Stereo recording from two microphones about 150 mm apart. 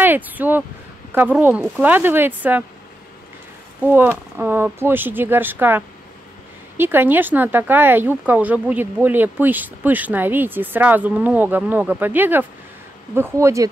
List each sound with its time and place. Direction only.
0.0 s speech: 10° right (ahead or behind)
3.8 s speech: 15° right (ahead or behind)